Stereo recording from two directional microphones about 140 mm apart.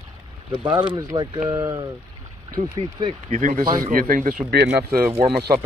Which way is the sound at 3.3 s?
70° right (ahead or behind).